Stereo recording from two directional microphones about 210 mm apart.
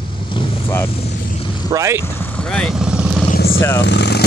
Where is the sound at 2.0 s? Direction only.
10° left (ahead or behind).